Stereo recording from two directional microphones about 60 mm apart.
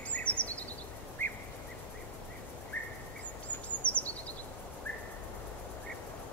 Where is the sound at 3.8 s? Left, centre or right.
Left.